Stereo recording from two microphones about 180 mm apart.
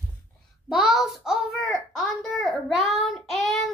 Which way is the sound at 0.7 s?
Centre (ahead or behind).